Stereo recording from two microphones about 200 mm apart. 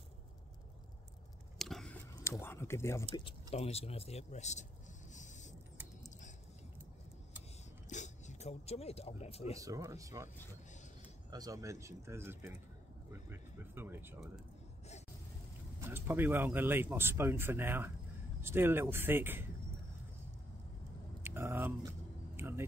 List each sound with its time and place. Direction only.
1.6 s a sound: centre (ahead or behind)
2.4 s speech: 10° left (ahead or behind)
3.3 s speech: 30° left (ahead or behind)
5.1 s a sound: 40° left (ahead or behind)
7.9 s speech: 35° left (ahead or behind)
9.6 s speech: 15° right (ahead or behind)
15.8 s speech: 10° right (ahead or behind)
21.2 s vehicle: 10° right (ahead or behind)
22.4 s a sound: 10° right (ahead or behind)